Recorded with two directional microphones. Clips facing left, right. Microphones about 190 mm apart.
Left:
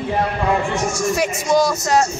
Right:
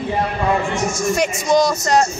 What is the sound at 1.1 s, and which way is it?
Speech, 5° left (ahead or behind).